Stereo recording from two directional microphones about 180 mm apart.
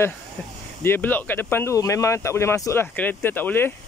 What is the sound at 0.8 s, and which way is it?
Speech, 10° left (ahead or behind).